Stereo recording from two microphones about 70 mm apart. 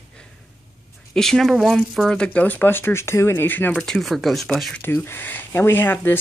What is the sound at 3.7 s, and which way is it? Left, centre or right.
Speech, centre.